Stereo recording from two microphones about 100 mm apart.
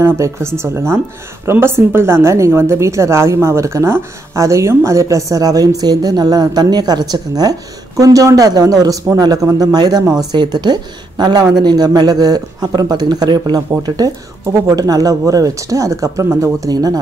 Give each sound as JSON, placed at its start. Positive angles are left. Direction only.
{"t": 0.0, "sound": "a woman's voice", "side_deg": -25}